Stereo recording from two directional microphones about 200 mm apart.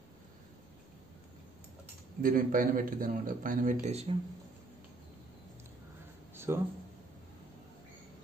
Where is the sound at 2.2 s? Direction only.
45° right (ahead or behind).